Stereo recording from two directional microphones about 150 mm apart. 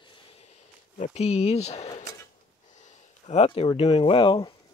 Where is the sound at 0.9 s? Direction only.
50° left (ahead or behind).